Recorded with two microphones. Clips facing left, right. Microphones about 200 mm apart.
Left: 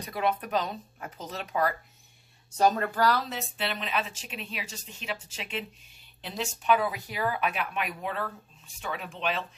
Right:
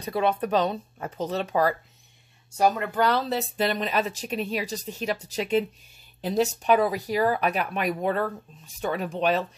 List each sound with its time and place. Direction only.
0.0 s speech: 30° right (ahead or behind)
2.5 s speech: 10° right (ahead or behind)
3.5 s speech: 40° right (ahead or behind)